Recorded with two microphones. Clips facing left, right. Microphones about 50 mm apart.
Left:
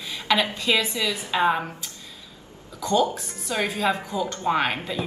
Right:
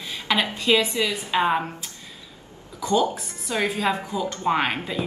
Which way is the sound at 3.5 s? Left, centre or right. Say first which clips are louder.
Right 1 dB; right.